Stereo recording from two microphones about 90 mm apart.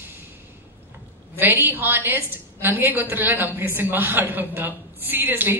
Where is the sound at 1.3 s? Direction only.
20° right (ahead or behind).